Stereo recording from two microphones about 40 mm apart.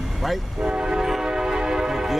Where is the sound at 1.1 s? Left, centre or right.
Centre.